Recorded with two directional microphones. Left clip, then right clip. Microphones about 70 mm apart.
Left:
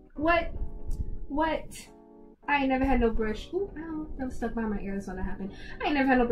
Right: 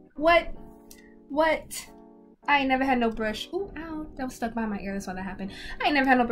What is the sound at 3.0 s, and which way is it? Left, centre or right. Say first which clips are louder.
A woman's voice: right 1 dB; right.